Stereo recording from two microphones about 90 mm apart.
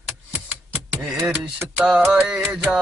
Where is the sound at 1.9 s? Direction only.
5° right (ahead or behind).